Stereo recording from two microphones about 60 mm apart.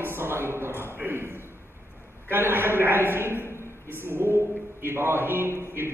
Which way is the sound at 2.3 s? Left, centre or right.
Right.